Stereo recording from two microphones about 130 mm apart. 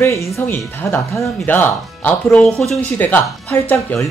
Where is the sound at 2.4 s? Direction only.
5° left (ahead or behind).